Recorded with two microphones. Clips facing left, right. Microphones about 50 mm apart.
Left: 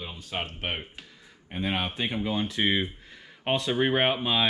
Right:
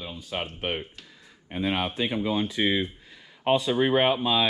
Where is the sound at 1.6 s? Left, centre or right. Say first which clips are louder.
Right 2 dB; centre.